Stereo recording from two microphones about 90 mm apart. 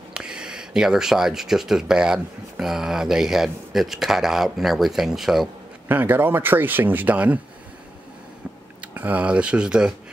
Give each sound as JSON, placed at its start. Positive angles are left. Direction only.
{"t": 0.1, "sound": "speech", "side_deg": -10}
{"t": 5.9, "sound": "speech", "side_deg": -20}
{"t": 8.8, "sound": "speech", "side_deg": -15}